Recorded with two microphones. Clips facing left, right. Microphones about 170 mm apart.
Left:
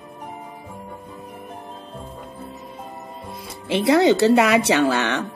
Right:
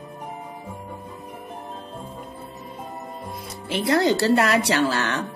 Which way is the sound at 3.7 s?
25° left (ahead or behind).